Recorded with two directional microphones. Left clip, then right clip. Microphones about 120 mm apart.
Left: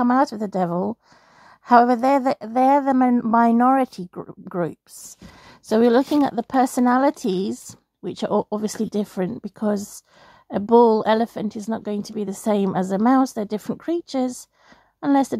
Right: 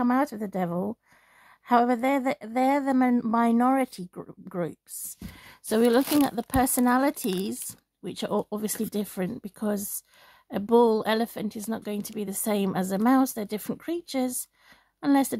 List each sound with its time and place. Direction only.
0.0 s speech: 40° left (ahead or behind)
2.9 s a woman's voice: 30° left (ahead or behind); by 15.3 s 45° left (ahead or behind)